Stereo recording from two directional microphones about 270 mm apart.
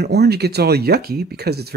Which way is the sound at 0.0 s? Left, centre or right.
Right.